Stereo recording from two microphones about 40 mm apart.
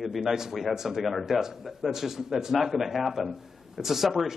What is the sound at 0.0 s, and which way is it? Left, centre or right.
A man's voice, centre.